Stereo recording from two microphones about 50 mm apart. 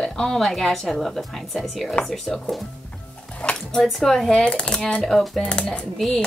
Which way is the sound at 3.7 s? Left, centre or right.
Centre.